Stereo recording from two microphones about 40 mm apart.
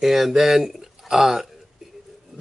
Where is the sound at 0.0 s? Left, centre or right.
Centre.